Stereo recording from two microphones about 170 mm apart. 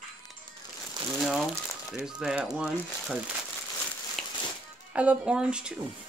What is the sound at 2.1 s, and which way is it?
Speech, 5° right (ahead or behind).